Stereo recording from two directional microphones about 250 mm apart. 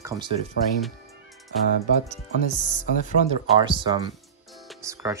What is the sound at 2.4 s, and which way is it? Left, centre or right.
Speech, left.